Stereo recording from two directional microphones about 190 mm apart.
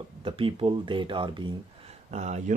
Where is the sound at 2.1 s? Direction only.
35° right (ahead or behind).